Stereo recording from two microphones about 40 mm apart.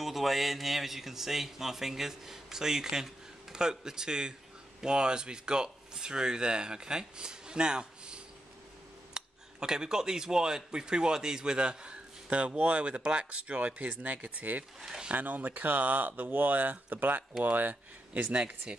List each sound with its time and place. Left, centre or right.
0.0 s speech: centre; by 18.6 s right